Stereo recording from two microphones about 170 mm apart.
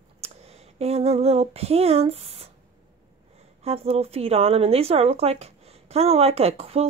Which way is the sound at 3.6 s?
35° right (ahead or behind).